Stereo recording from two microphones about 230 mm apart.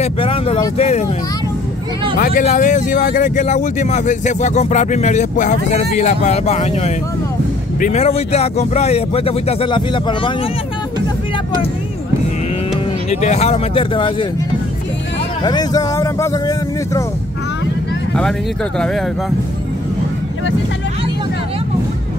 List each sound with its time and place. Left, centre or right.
0.0 s speech: left
2.1 s speech: left
13.1 s speech: left
15.4 s speech: centre